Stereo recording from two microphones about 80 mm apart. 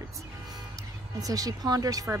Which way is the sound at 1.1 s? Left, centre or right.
Right.